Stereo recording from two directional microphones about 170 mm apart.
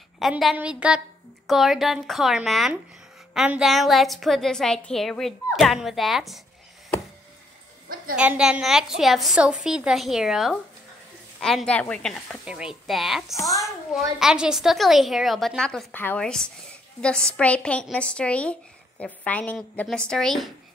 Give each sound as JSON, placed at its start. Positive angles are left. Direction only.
{"t": 0.2, "sound": "a woman's voice", "side_deg": 0}
{"t": 8.2, "sound": "a woman's voice", "side_deg": -5}
{"t": 13.4, "sound": "a child's voice", "side_deg": 20}
{"t": 13.9, "sound": "a woman's voice", "side_deg": -5}